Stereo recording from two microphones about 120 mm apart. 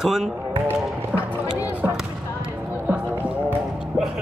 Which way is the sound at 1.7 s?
15° right (ahead or behind).